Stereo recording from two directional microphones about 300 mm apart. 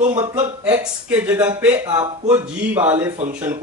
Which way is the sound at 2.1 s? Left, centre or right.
Centre.